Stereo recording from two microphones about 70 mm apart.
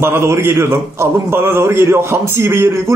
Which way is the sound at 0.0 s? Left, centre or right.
Right.